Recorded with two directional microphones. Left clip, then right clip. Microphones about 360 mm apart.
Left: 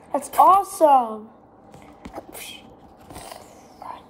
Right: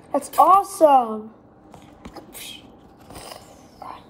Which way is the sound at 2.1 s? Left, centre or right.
Left.